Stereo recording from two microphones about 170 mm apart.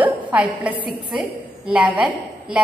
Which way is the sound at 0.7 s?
30° left (ahead or behind).